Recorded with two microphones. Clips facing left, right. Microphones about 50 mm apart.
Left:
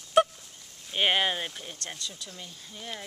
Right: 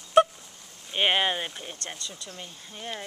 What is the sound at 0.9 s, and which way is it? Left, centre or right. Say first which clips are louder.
Speech: right 1 dB; centre.